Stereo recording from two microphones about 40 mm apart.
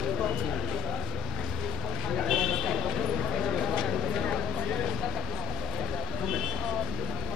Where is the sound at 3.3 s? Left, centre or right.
Centre.